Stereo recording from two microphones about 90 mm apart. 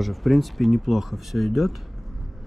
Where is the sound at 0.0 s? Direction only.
Centre (ahead or behind).